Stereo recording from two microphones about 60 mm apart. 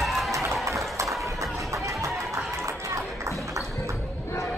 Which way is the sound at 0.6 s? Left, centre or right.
Right.